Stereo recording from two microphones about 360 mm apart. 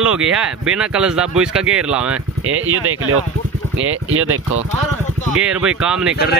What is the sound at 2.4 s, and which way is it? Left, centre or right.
Speech, right.